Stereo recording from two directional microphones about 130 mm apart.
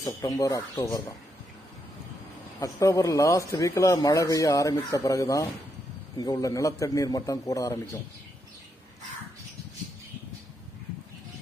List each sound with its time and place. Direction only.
0.0 s speech: 25° left (ahead or behind)
2.6 s speech: 25° left (ahead or behind)